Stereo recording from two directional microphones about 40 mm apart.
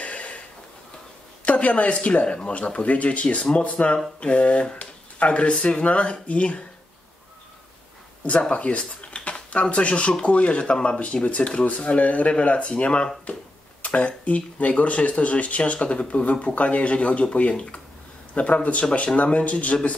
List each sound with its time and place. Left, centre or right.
0.0 s a sound: left
1.4 s speech: left
2.2 s speech: left
8.2 s speech: left